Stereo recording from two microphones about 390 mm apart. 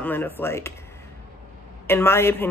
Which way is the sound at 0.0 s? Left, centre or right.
Centre.